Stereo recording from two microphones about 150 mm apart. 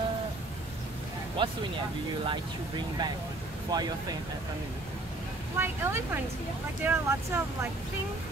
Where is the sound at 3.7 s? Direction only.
25° right (ahead or behind).